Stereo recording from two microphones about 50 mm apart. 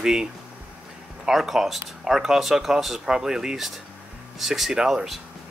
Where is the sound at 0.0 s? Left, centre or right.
Centre.